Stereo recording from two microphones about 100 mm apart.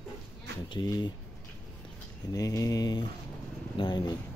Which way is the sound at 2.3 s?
35° left (ahead or behind).